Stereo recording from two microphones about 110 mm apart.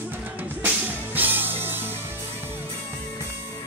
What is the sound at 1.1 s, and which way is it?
Music, 15° right (ahead or behind).